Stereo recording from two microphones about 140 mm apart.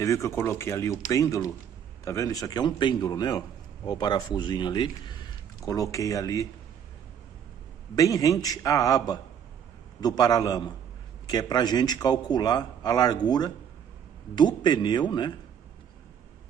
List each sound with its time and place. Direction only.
0.0 s a man's voice: 20° left (ahead or behind)
7.9 s a man's voice: 25° left (ahead or behind)